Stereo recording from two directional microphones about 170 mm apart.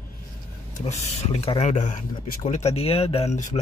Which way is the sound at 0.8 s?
40° left (ahead or behind).